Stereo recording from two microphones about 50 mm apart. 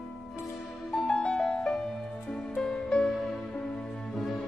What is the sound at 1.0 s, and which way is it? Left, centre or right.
Music, centre.